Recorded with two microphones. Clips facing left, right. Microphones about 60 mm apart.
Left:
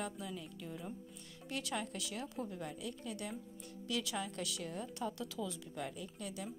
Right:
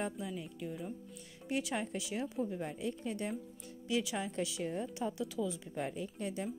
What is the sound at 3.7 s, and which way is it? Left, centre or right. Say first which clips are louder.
A woman's voice: right 4 dB; centre.